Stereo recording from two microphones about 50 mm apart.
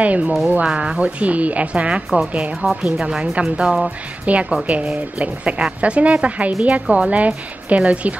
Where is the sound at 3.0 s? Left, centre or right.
Centre.